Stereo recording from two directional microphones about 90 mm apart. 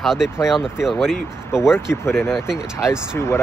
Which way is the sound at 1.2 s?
30° left (ahead or behind).